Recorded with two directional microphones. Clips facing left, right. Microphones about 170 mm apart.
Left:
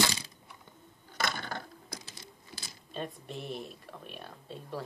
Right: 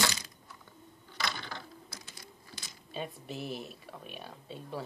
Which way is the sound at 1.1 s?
50° left (ahead or behind).